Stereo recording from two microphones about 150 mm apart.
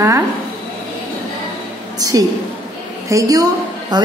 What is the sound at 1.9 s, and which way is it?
A woman's voice, 25° right (ahead or behind).